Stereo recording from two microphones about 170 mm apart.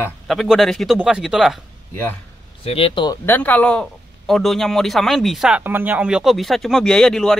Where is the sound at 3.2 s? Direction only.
10° left (ahead or behind).